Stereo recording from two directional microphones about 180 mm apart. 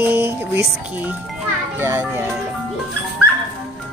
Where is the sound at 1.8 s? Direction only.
10° right (ahead or behind).